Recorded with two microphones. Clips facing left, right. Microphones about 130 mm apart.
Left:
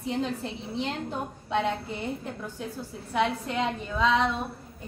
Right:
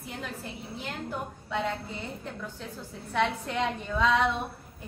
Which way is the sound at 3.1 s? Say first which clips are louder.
Left 1 dB; 5° left (ahead or behind).